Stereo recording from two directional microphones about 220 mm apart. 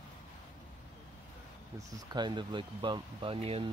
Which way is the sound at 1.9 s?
20° right (ahead or behind).